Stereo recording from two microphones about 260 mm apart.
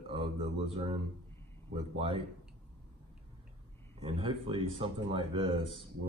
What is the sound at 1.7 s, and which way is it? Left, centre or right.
Speech, right.